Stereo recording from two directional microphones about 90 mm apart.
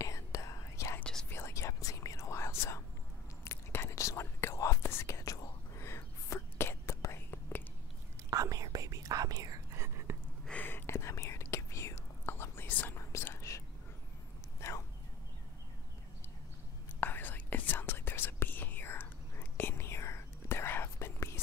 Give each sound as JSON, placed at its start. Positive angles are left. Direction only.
{"t": 0.0, "sound": "whispering", "side_deg": 35}
{"t": 8.3, "sound": "whispering", "side_deg": -40}
{"t": 9.8, "sound": "a sound", "side_deg": -30}
{"t": 10.5, "sound": "whispering", "side_deg": 25}
{"t": 14.6, "sound": "a sound", "side_deg": 30}
{"t": 17.0, "sound": "whispering", "side_deg": 20}